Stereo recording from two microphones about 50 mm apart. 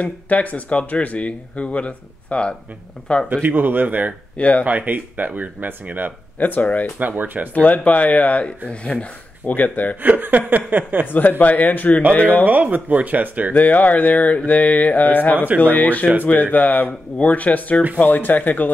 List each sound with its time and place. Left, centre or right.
0.0 s speech: left
3.4 s speech: right
4.4 s speech: left
4.6 s speech: right
6.4 s mantra: left
7.0 s speech: right
7.5 s speech: left
9.5 s mantra: left
10.0 s speech: right
11.1 s mantra: left
12.4 s speech: right
13.5 s mantra: left
15.3 s speech: right
15.6 s mantra: left